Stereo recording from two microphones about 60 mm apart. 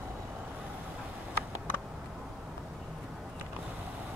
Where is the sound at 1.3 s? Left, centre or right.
Left.